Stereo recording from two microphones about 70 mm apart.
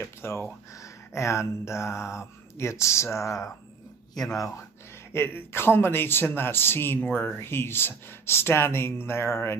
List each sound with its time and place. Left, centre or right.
0.0 s speech: left
0.7 s speech: left
5.1 s speech: left